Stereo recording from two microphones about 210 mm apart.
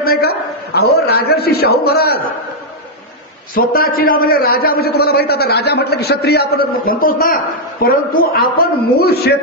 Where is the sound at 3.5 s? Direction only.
45° left (ahead or behind).